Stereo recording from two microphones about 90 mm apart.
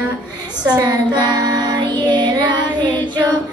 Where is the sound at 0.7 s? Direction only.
45° right (ahead or behind).